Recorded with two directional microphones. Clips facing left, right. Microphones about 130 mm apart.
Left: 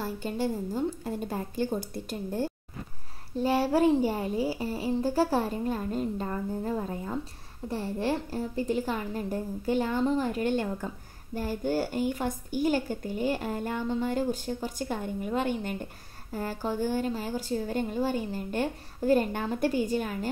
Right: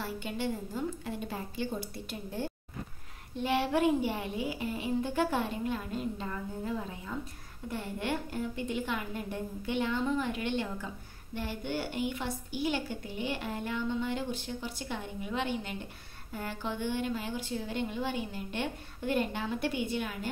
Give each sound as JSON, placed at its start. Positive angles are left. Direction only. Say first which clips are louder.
{"t": 0.0, "sound": "a woman's voice", "louder": "left 4 dB", "side_deg": 40}